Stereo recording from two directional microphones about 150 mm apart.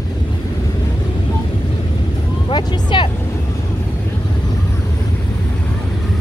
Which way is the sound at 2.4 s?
35° left (ahead or behind).